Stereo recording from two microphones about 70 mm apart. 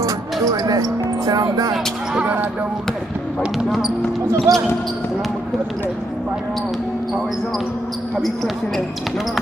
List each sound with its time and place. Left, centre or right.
0.0 s music: right
4.5 s speech: right